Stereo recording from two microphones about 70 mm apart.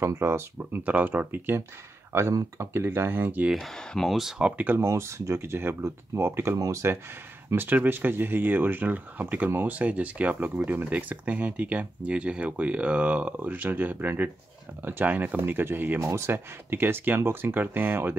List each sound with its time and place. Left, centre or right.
0.0 s speech: right
0.8 s speech: right
3.5 s speech: centre
4.2 s speech: centre
4.8 s speech: right
6.6 s speech: right
7.5 s speech: right
16.0 s speech: right